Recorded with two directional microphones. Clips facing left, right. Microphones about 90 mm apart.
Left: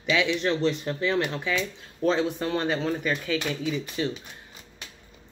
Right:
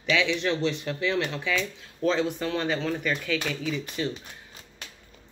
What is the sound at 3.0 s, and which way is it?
Speech, 20° left (ahead or behind).